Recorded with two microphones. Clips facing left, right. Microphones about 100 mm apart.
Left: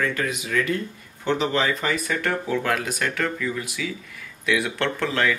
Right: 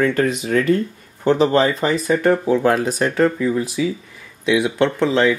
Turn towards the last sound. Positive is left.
turn(degrees=-20)  # may be behind; listen again after turning